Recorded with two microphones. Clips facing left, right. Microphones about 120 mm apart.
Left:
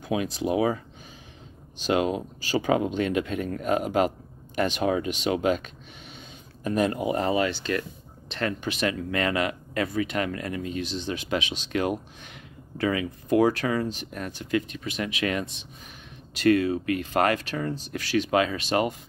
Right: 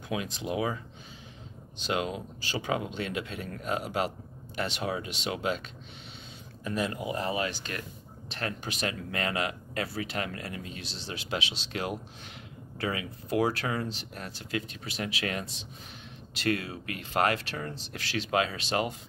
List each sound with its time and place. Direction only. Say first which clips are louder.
0.5 s speech: left 7 dB; 40° left (ahead or behind)
1.9 s speech: left 7 dB; 45° left (ahead or behind)
16.3 s speech: left 10 dB; 45° left (ahead or behind)